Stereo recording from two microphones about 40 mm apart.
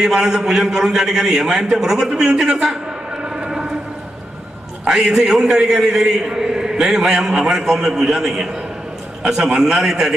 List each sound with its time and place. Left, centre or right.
0.0 s a man's voice: centre
3.2 s a sound: centre
4.8 s a man's voice: centre